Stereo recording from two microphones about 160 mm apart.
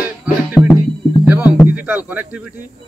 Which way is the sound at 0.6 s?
5° right (ahead or behind).